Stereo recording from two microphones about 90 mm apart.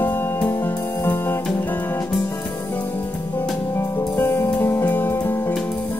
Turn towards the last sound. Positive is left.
turn(degrees=25)  # may be behind; listen again after turning